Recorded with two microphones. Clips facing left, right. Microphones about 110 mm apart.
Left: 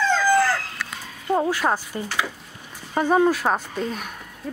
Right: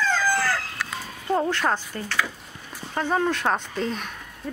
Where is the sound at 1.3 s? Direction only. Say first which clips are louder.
Left 2 dB; 5° left (ahead or behind).